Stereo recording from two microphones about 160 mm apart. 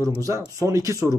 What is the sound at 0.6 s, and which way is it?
Speech, 20° right (ahead or behind).